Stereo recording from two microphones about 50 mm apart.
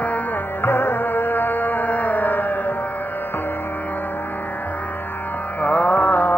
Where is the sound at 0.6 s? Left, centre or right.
Left.